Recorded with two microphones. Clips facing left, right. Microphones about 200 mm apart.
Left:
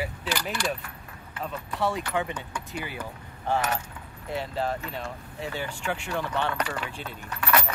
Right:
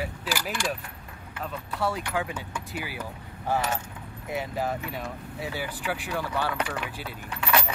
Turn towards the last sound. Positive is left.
turn(degrees=-10)  # may be behind; listen again after turning